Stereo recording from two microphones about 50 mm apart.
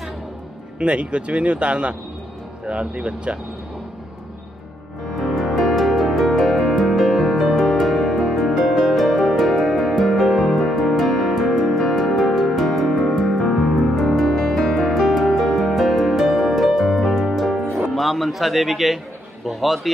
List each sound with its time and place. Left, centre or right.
0.7 s speech: right
5.1 s music: centre
17.9 s a man's voice: centre